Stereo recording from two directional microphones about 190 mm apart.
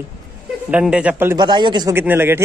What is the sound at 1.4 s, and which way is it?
Speech, 25° right (ahead or behind).